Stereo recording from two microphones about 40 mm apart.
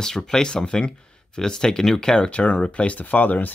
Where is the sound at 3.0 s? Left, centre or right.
Left.